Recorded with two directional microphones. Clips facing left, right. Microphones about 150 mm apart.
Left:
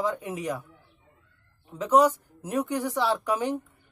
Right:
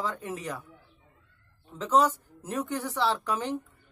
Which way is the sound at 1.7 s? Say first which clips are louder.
Left 3 dB; 10° left (ahead or behind).